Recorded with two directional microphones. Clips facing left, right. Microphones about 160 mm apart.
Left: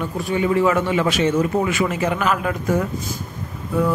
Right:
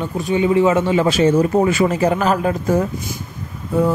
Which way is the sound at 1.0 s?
35° right (ahead or behind).